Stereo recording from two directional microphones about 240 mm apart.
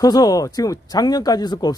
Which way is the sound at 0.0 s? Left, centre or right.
Centre.